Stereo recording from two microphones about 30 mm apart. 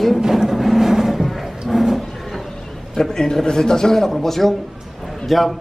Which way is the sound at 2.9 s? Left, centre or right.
Centre.